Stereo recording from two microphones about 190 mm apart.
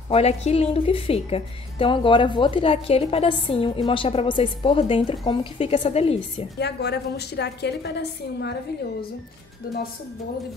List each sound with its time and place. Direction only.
0.1 s a woman's voice: 35° left (ahead or behind)
6.6 s a woman's voice: 60° left (ahead or behind)
9.7 s a woman's voice: 50° left (ahead or behind)